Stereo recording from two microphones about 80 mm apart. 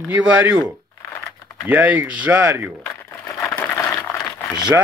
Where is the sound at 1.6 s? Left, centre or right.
Right.